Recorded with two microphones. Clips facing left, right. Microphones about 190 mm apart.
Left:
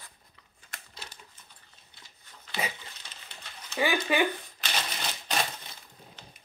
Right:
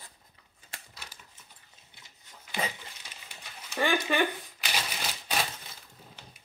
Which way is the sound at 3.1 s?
10° right (ahead or behind).